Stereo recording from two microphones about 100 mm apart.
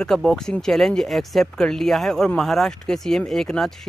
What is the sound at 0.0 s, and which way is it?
Speech, 5° left (ahead or behind).